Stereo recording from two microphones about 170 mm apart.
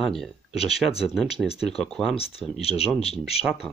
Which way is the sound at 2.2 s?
35° left (ahead or behind).